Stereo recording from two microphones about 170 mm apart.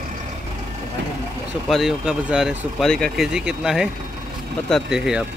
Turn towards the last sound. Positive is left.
turn(degrees=-5)  # may be behind; listen again after turning